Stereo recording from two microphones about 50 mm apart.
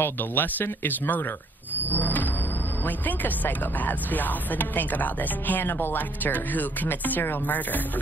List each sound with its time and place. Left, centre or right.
0.0 s speech: left
1.9 s music: left
2.8 s speech: left